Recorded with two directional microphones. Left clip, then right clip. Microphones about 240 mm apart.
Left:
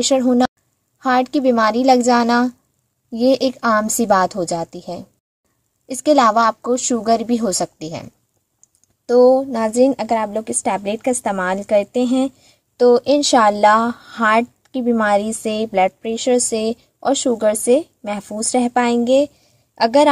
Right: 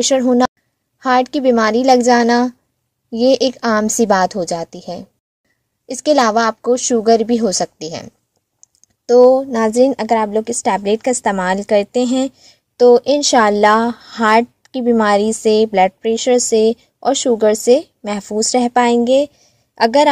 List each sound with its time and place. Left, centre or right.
0.0 s a woman's voice: right
9.1 s a woman's voice: right